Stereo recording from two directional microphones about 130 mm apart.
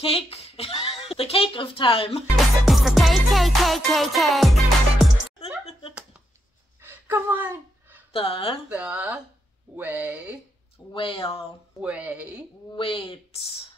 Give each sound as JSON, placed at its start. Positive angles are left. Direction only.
{"t": 0.0, "sound": "a woman's voice", "side_deg": 50}
{"t": 2.3, "sound": "music", "side_deg": 0}
{"t": 5.7, "sound": "a sound", "side_deg": 45}
{"t": 6.8, "sound": "a sound", "side_deg": -15}
{"t": 8.1, "sound": "speech", "side_deg": 45}
{"t": 8.6, "sound": "speech", "side_deg": -10}
{"t": 10.9, "sound": "speech", "side_deg": 40}
{"t": 11.8, "sound": "speech", "side_deg": -10}
{"t": 12.7, "sound": "speech", "side_deg": 45}